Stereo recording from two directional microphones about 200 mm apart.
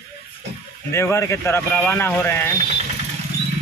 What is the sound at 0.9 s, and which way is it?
Speech, 15° left (ahead or behind).